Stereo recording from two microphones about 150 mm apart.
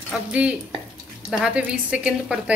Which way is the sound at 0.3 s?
10° right (ahead or behind).